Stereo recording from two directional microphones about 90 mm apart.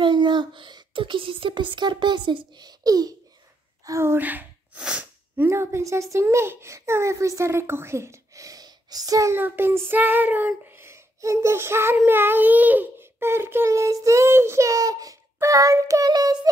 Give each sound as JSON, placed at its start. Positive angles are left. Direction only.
{"t": 0.0, "sound": "speech", "side_deg": -60}
{"t": 3.8, "sound": "a child's voice", "side_deg": -30}
{"t": 4.2, "sound": "speech", "side_deg": -20}
{"t": 5.4, "sound": "a child's voice", "side_deg": -30}
{"t": 9.3, "sound": "child singing", "side_deg": -25}
{"t": 12.0, "sound": "a child's voice", "side_deg": -25}